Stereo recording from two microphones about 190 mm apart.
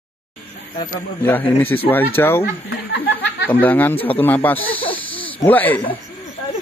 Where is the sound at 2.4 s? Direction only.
65° left (ahead or behind).